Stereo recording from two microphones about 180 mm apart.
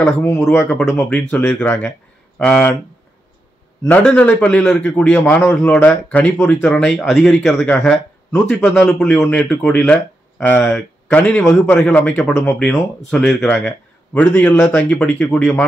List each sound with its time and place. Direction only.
0.0 s speech: 10° left (ahead or behind)
3.8 s speech: 5° left (ahead or behind)